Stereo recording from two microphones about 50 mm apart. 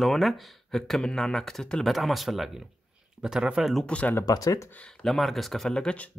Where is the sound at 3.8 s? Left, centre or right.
Left.